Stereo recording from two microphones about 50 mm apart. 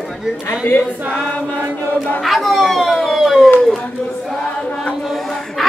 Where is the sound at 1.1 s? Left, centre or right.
Left.